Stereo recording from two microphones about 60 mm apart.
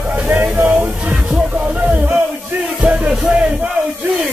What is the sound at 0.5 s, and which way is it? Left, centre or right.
Speech, right.